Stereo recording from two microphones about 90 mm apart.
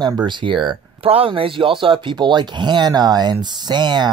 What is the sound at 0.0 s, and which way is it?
Speech, 60° right (ahead or behind).